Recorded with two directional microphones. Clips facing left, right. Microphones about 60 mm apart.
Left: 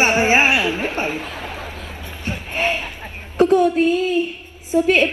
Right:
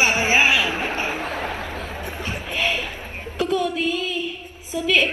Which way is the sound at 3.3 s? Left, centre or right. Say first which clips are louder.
Left 8 dB; left.